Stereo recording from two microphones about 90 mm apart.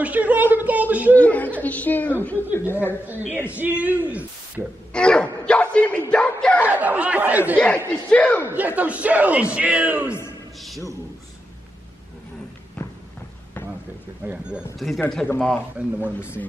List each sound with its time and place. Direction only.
0.0 s a sound: 15° right (ahead or behind)
1.1 s a sound: 15° left (ahead or behind)
1.6 s a woman's voice: 20° left (ahead or behind)
3.1 s a woman's voice: 20° right (ahead or behind)
4.9 s speech: 10° left (ahead or behind)
6.7 s a man's voice: 15° right (ahead or behind)
7.6 s speech: 15° left (ahead or behind)
8.5 s a man's voice: 15° right (ahead or behind)
14.2 s a man's voice: 15° right (ahead or behind)
14.8 s speech: centre (ahead or behind)
15.2 s speech: 10° left (ahead or behind)
16.0 s a woman's voice: 25° left (ahead or behind)